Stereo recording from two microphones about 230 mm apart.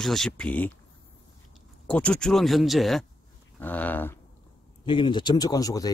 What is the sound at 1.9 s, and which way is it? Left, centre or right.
Speech, centre.